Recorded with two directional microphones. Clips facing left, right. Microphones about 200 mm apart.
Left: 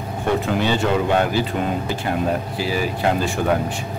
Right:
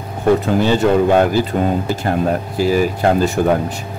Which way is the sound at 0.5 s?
40° right (ahead or behind).